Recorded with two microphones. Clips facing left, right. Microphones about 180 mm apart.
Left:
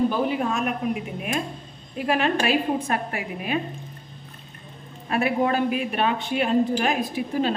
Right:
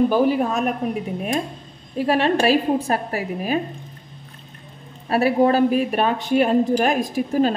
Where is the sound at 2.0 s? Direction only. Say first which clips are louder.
Right 4 dB; 35° right (ahead or behind).